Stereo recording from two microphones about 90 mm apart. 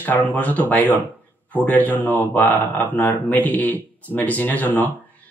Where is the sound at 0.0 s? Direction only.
20° left (ahead or behind).